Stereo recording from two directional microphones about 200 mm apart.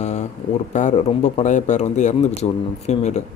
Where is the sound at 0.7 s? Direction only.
35° left (ahead or behind).